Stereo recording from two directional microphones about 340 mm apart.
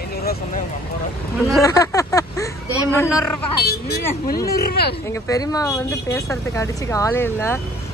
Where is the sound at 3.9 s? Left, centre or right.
Left.